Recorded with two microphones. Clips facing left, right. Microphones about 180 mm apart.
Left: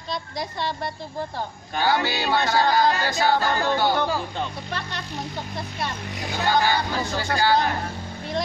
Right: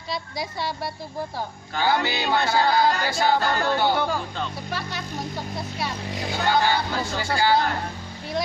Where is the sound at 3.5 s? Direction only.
15° left (ahead or behind).